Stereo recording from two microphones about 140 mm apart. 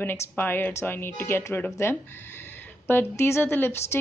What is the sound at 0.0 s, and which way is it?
Speech, 15° left (ahead or behind).